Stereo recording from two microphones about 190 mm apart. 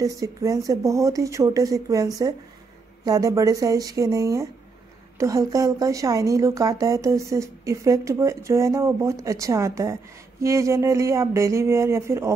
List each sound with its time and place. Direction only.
0.0 s a woman's voice: 15° right (ahead or behind)